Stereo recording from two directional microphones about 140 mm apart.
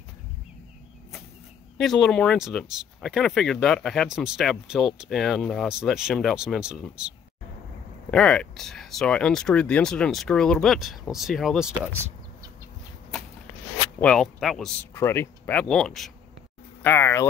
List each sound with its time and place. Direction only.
1.8 s speech: 5° left (ahead or behind)
8.1 s speech: 5° left (ahead or behind)
14.0 s speech: 5° left (ahead or behind)
14.8 s speech: 15° left (ahead or behind); by 16.1 s centre (ahead or behind)
16.8 s speech: 15° left (ahead or behind)